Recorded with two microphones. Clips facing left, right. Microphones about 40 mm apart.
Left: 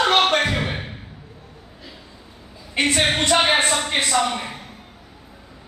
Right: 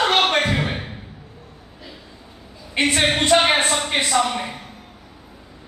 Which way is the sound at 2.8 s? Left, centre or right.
Centre.